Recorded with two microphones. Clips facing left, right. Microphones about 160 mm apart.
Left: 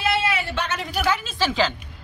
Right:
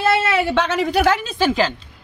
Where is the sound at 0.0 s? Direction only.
75° right (ahead or behind).